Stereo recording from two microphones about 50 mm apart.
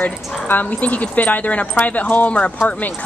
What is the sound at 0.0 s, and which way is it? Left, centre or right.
Speech, left.